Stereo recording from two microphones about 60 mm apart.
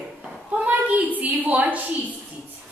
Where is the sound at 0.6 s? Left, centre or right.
Right.